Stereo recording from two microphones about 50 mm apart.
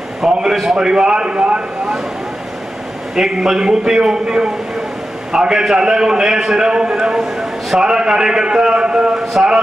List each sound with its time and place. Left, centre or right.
0.3 s a man's voice: centre
3.2 s a man's voice: centre